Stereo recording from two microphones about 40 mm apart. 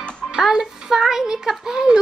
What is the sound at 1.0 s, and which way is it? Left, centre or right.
Speech, centre.